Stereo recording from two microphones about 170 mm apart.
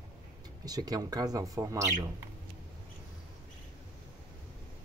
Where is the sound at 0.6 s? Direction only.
20° right (ahead or behind).